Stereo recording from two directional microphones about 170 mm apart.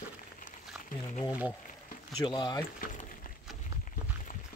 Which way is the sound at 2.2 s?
25° left (ahead or behind).